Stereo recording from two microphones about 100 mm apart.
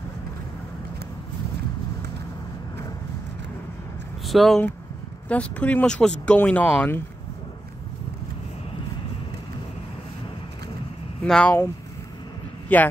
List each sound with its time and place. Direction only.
4.3 s speech: centre (ahead or behind)
5.3 s speech: 15° left (ahead or behind)
11.2 s speech: 5° left (ahead or behind)
12.6 s a man's voice: 15° left (ahead or behind)